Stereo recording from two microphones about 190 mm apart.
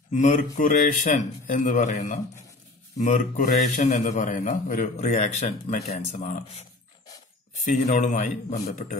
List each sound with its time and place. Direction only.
0.1 s a man's voice: 40° left (ahead or behind)
7.6 s a man's voice: 40° left (ahead or behind)